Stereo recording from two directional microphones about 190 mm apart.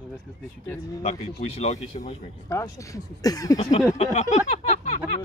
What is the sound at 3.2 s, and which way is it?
Speech, 20° left (ahead or behind).